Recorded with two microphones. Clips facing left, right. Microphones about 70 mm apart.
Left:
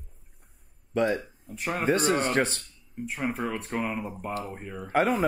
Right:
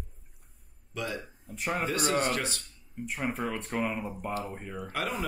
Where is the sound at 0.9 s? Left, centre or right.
Left.